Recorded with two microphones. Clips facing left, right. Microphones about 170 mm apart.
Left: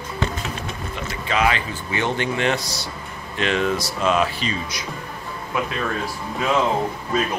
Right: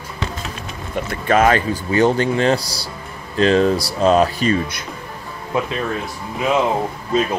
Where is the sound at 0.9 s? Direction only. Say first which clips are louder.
Right 8 dB; 50° right (ahead or behind).